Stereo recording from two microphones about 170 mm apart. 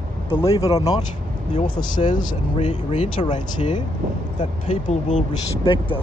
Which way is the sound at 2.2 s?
45° left (ahead or behind).